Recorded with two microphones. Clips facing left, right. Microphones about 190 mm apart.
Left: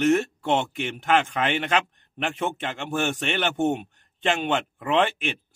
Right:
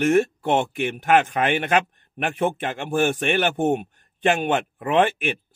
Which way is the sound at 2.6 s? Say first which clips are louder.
Right 5 dB; 45° right (ahead or behind).